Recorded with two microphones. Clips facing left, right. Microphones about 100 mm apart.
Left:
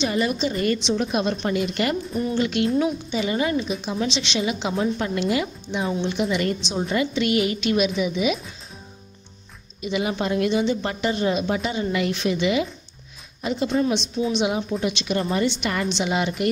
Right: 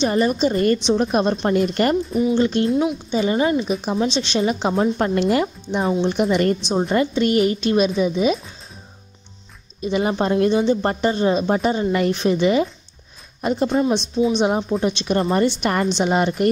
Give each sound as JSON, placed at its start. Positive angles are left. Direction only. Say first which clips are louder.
{"t": 0.0, "sound": "a woman's voice", "louder": "right 5 dB", "side_deg": -40}
{"t": 9.8, "sound": "a woman's voice", "louder": "right 4 dB", "side_deg": -40}